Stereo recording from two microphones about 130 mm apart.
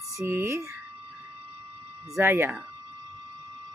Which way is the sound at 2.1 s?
20° right (ahead or behind).